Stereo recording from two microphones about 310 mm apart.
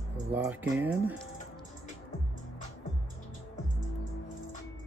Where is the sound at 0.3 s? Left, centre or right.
Centre.